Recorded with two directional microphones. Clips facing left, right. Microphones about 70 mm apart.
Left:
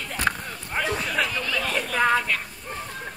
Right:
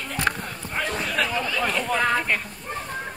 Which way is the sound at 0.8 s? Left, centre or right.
Centre.